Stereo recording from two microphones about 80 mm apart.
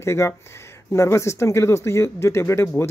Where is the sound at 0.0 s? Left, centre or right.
Left.